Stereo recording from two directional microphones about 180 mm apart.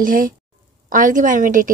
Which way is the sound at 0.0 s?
50° right (ahead or behind).